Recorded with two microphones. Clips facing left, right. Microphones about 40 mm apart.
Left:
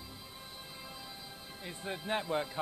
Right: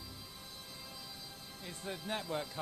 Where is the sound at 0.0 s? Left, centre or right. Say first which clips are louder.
Left 2 dB; centre.